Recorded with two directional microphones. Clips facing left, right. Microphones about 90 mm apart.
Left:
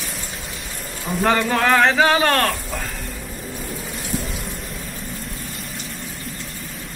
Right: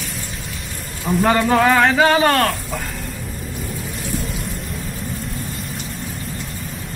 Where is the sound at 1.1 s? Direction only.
15° right (ahead or behind).